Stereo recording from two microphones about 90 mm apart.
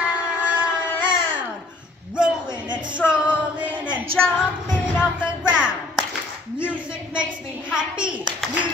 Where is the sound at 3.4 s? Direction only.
15° right (ahead or behind).